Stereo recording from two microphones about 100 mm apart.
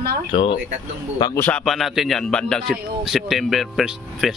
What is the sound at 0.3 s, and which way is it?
Speech, 60° left (ahead or behind).